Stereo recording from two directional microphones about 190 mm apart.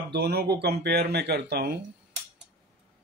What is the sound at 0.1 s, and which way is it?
Speech, 55° right (ahead or behind).